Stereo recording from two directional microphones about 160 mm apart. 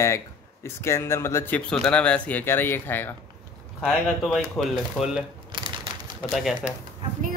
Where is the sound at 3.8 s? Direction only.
Centre (ahead or behind).